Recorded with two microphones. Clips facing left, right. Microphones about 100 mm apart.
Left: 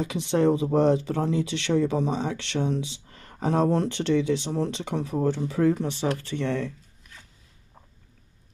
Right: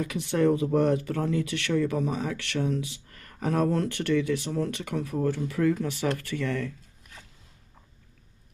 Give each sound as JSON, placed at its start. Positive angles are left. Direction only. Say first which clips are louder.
{"t": 0.0, "sound": "speech", "louder": "left 2 dB", "side_deg": 25}